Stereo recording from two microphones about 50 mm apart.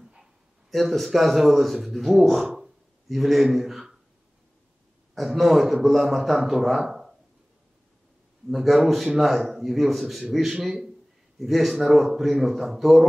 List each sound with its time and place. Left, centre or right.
0.7 s a man's voice: centre
5.1 s a man's voice: centre
8.5 s a man's voice: centre